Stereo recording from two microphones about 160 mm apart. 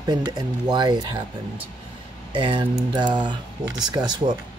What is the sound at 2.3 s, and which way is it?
Speech, 30° right (ahead or behind).